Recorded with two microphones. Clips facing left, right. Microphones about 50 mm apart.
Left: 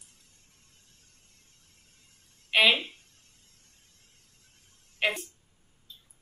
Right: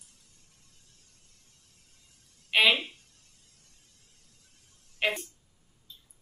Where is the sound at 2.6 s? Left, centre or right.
Left.